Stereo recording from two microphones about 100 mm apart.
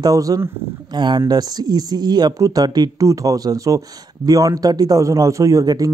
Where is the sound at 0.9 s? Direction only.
45° right (ahead or behind).